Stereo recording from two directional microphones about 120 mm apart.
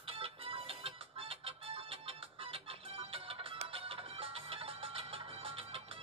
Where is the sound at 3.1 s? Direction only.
50° right (ahead or behind).